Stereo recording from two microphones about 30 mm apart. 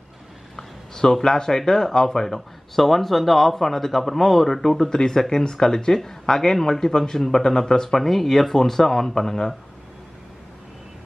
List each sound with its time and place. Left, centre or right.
0.6 s speech: centre
8.0 s speech: centre